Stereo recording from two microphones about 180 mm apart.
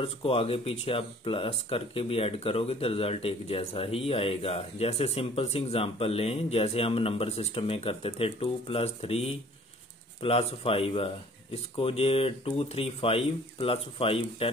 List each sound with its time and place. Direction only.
0.0 s speech: 30° left (ahead or behind)